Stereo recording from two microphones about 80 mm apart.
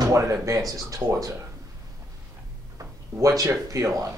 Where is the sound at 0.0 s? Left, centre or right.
Right.